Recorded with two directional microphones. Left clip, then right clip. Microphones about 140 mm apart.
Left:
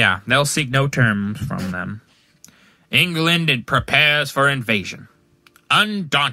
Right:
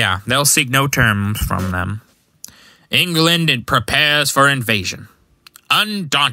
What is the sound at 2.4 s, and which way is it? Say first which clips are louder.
Speech: right 9 dB; 40° right (ahead or behind).